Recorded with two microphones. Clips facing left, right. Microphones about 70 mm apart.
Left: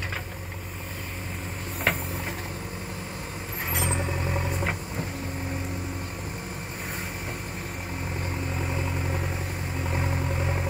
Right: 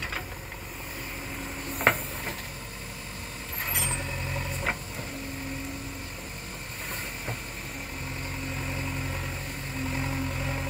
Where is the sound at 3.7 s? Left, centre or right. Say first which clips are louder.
Left 7 dB; left.